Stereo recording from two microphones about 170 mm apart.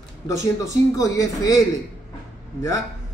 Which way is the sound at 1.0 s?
20° left (ahead or behind).